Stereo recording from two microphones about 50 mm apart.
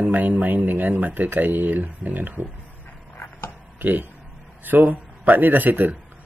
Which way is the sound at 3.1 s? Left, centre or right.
Left.